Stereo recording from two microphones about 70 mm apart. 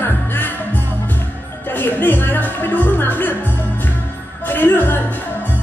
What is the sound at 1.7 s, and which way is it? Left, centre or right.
Speech, left.